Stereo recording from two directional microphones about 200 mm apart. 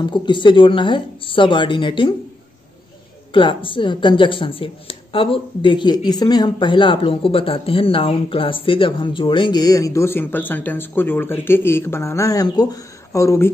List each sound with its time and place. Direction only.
0.0 s a woman's voice: 25° left (ahead or behind)
3.3 s a woman's voice: 25° left (ahead or behind)